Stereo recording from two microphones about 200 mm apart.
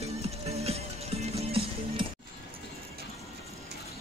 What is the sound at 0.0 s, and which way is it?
Music, 30° right (ahead or behind).